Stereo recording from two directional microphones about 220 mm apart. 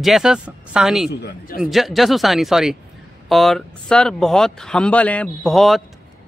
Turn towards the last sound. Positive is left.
turn(degrees=0)  # may be behind; listen again after turning